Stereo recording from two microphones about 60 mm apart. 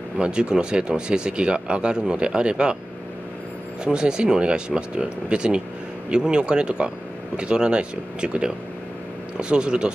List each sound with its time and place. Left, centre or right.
0.2 s speech: centre
3.8 s speech: centre